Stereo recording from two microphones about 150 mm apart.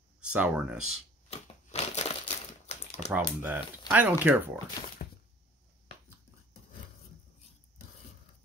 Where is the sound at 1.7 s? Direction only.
45° left (ahead or behind).